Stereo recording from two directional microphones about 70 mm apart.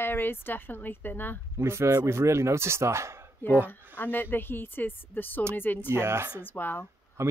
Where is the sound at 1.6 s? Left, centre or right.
Right.